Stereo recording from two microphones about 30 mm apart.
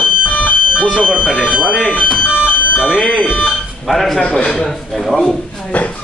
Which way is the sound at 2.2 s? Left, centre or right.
Left.